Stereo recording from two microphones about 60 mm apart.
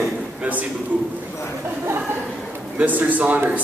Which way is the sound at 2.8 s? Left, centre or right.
Right.